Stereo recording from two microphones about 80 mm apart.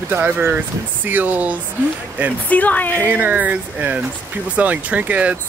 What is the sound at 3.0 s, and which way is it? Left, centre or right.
Speech, right.